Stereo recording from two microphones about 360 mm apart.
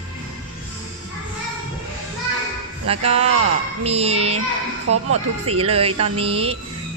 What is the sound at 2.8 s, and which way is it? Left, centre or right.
Speech, centre.